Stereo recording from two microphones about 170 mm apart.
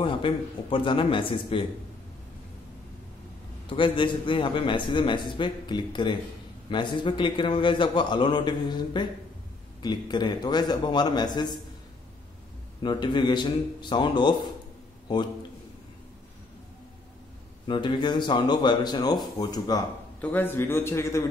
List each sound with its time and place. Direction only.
0.0 s a man's voice: 30° left (ahead or behind)
3.6 s a man's voice: 30° left (ahead or behind)
12.8 s a man's voice: 25° left (ahead or behind)
17.6 s a man's voice: 30° left (ahead or behind)
20.2 s a man's voice: 10° left (ahead or behind)